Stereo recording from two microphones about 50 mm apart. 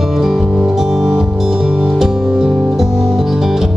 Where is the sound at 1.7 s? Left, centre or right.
Right.